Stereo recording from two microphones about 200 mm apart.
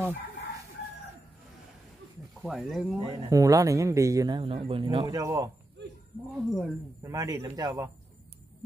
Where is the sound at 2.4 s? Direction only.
Centre (ahead or behind).